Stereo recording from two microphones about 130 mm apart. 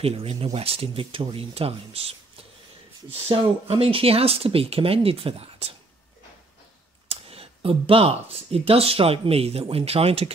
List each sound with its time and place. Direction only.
0.0 s speech: 50° right (ahead or behind)
7.1 s speech: 50° right (ahead or behind)